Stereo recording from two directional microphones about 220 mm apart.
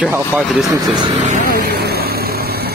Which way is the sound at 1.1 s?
35° right (ahead or behind).